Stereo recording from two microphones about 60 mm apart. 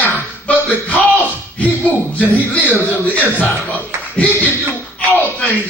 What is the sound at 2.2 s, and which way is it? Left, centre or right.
A man's voice, left.